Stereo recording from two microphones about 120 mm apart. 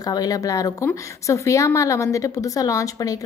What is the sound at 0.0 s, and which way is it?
A woman's voice, 30° left (ahead or behind).